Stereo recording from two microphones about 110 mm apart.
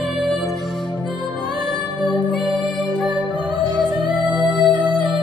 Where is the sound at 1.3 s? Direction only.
45° right (ahead or behind).